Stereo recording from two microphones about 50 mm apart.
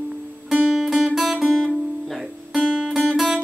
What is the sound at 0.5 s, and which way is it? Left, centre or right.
Music, centre.